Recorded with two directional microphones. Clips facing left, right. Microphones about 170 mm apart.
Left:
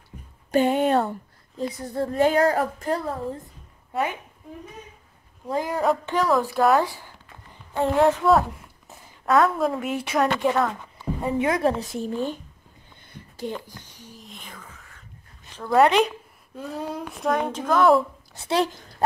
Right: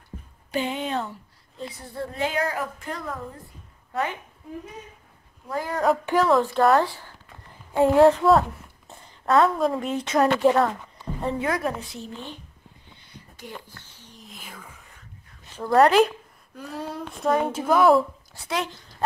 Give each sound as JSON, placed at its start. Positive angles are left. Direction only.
{"t": 0.1, "sound": "a sound", "side_deg": -40}
{"t": 0.5, "sound": "speech", "side_deg": 50}
{"t": 3.9, "sound": "a woman's voice", "side_deg": 15}
{"t": 5.5, "sound": "speech", "side_deg": 15}
{"t": 6.0, "sound": "speech", "side_deg": 0}
{"t": 7.8, "sound": "a woman's voice", "side_deg": 0}
{"t": 10.1, "sound": "speech", "side_deg": 0}
{"t": 11.3, "sound": "a woman's voice", "side_deg": 20}
{"t": 11.8, "sound": "speech", "side_deg": 45}
{"t": 13.1, "sound": "a sound", "side_deg": 55}
{"t": 13.7, "sound": "a sound", "side_deg": 15}
{"t": 14.1, "sound": "whispering", "side_deg": 0}
{"t": 15.5, "sound": "speech", "side_deg": -5}
{"t": 18.3, "sound": "speech", "side_deg": 30}